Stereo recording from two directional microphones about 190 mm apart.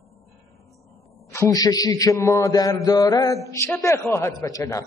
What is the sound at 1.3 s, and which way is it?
A man's voice, 15° left (ahead or behind).